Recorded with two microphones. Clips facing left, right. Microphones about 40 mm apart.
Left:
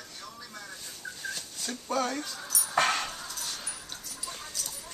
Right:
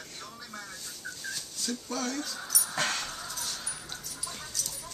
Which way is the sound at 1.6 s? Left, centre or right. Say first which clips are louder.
Left 3 dB; left.